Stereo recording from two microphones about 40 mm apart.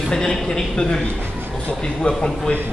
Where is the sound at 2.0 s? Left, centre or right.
Centre.